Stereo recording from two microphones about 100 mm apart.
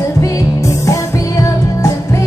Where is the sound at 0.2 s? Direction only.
35° left (ahead or behind).